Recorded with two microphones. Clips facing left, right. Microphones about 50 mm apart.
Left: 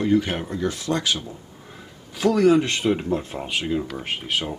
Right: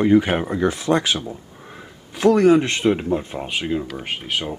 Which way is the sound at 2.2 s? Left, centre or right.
Centre.